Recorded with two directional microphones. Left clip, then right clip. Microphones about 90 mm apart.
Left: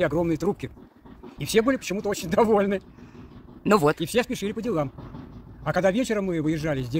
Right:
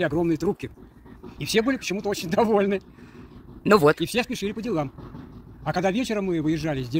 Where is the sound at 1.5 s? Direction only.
55° left (ahead or behind).